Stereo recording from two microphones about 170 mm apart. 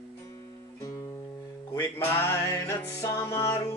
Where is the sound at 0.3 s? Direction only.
20° left (ahead or behind).